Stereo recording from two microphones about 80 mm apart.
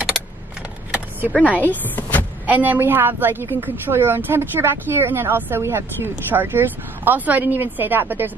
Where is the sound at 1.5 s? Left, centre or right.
Left.